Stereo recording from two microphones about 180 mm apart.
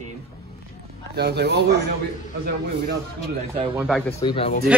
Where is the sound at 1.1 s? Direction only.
65° right (ahead or behind).